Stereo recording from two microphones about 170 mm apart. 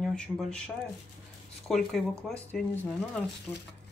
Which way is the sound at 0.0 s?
Centre (ahead or behind).